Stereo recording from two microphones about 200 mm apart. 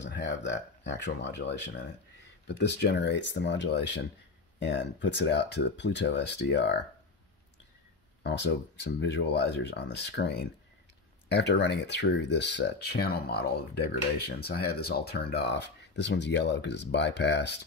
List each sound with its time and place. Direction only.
0.0 s speech: 65° left (ahead or behind)
8.2 s speech: 55° left (ahead or behind)